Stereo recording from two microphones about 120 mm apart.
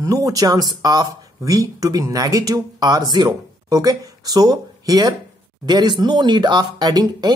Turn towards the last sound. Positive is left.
turn(degrees=-35)  # may be behind; listen again after turning